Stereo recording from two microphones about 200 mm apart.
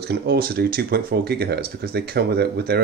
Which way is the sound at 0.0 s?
55° right (ahead or behind).